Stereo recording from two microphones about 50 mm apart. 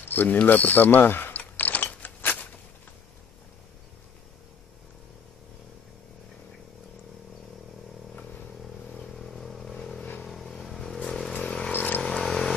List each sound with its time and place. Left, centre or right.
0.1 s speech: left
1.3 s mechanisms: left
9.0 s vehicle: centre
11.3 s vehicle: centre
11.7 s vehicle: left
12.0 s a sound: centre